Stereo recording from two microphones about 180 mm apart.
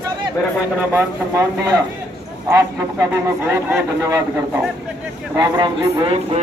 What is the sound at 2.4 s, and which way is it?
Speech, 20° right (ahead or behind).